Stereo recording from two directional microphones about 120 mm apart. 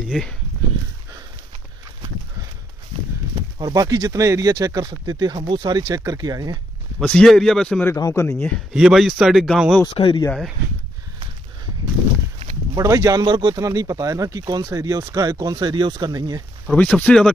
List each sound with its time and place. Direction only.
0.0 s a man's voice: centre (ahead or behind)
3.5 s speech: 30° right (ahead or behind)
7.0 s a man's voice: 5° left (ahead or behind)
7.8 s speech: 25° left (ahead or behind)
8.7 s a man's voice: 5° right (ahead or behind)
9.8 s speech: 45° left (ahead or behind)
12.7 s speech: 30° right (ahead or behind)
16.7 s speech: 10° left (ahead or behind)